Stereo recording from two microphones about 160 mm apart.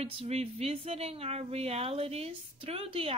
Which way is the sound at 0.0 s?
40° right (ahead or behind).